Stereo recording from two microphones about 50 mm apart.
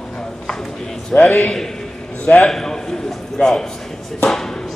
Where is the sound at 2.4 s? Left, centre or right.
Centre.